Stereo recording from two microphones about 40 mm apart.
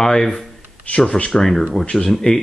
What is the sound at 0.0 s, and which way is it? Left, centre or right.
Speech, centre.